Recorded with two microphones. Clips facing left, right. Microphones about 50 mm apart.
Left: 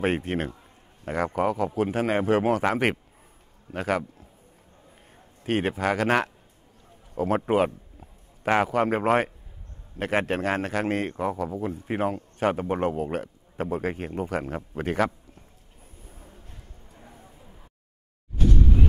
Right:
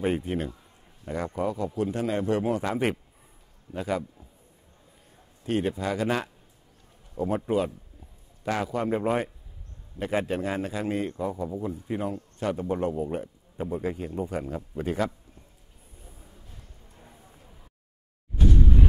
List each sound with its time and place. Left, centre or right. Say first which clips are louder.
0.0 s a man's voice: left 2 dB; left
1.0 s a man's voice: left 4 dB; left
1.7 s a man's voice: left 3 dB; left
5.1 s a man's voice: left 2 dB; left
16.1 s a sound: left 3 dB; left